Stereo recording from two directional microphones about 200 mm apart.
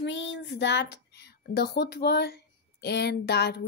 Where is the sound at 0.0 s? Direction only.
65° left (ahead or behind).